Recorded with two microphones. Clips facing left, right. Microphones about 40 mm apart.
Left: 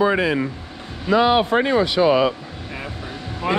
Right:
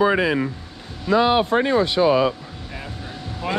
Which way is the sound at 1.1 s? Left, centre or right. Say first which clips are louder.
Left 1 dB; left.